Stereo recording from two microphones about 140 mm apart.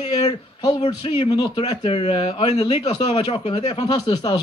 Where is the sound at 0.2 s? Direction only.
30° left (ahead or behind).